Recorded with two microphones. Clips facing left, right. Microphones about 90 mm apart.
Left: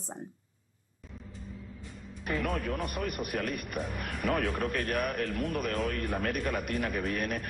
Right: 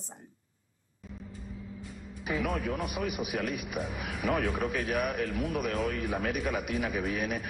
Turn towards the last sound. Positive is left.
turn(degrees=-5)  # may be behind; listen again after turning